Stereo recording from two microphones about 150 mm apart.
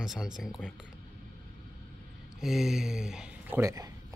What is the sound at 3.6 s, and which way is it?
Speech, 20° right (ahead or behind).